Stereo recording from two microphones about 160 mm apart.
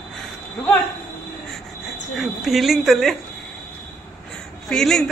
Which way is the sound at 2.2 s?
Centre (ahead or behind).